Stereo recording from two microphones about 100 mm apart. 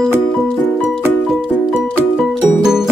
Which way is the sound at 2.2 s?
5° right (ahead or behind).